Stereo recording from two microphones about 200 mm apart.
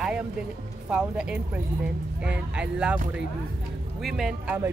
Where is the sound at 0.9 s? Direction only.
5° right (ahead or behind).